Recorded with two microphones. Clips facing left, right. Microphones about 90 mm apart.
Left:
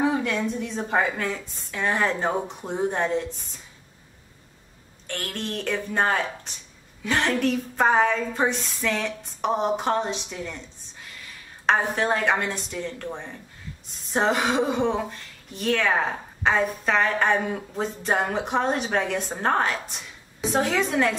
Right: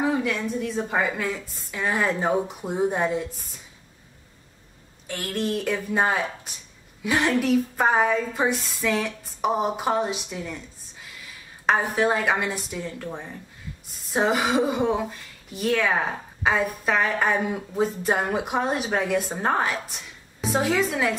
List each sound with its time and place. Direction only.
0.0 s a woman's voice: centre (ahead or behind)
5.0 s a woman's voice: 5° right (ahead or behind)